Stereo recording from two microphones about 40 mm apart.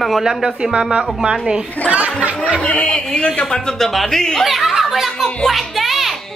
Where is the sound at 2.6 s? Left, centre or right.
Left.